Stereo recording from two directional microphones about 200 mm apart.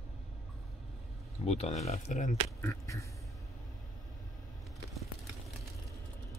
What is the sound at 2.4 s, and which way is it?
Speech, 15° left (ahead or behind).